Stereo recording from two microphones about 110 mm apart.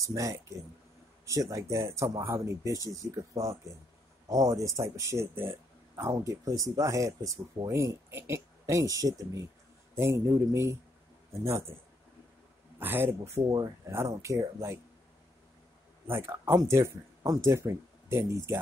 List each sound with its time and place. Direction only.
0.0 s speech: 30° right (ahead or behind)
12.7 s speech: 20° right (ahead or behind)
16.1 s speech: 20° right (ahead or behind)